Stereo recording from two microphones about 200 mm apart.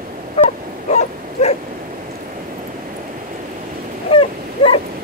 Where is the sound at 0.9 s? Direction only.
35° left (ahead or behind).